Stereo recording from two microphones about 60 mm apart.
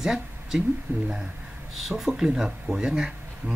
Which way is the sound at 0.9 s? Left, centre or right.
Right.